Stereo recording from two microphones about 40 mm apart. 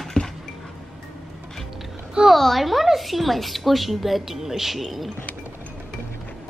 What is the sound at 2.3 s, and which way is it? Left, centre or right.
A woman's voice, centre.